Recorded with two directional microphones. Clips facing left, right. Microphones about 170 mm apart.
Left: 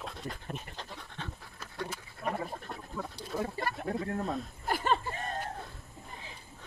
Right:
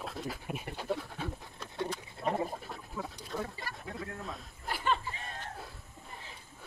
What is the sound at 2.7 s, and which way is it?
Duck, 5° right (ahead or behind).